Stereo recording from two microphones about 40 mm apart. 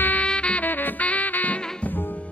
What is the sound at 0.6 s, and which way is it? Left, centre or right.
Music, left.